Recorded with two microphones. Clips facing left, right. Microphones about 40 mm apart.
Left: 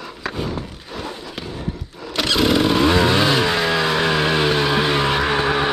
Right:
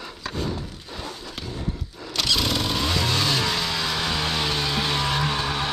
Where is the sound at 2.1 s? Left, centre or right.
Left.